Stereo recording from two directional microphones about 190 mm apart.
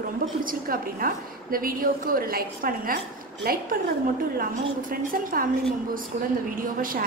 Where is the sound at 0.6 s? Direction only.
50° right (ahead or behind).